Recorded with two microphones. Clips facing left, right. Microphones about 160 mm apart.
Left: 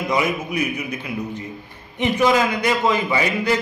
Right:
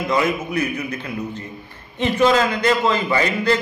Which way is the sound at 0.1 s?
15° left (ahead or behind).